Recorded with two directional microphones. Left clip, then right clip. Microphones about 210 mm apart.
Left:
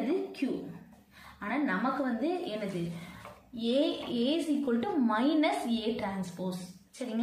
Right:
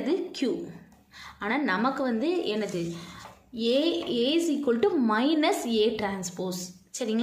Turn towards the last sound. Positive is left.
turn(degrees=-50)  # may be behind; listen again after turning